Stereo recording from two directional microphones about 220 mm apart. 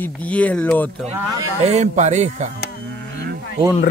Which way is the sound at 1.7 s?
30° right (ahead or behind).